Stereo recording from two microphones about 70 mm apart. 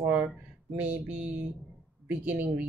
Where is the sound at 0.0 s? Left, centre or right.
Right.